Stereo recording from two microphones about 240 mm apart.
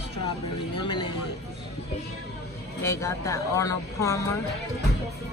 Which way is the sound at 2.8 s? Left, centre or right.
Centre.